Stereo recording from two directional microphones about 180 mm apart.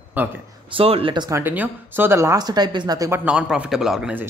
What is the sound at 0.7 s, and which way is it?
Speech, 30° right (ahead or behind).